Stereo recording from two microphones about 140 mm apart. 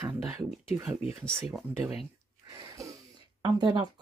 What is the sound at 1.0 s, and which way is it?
Speech, 45° left (ahead or behind).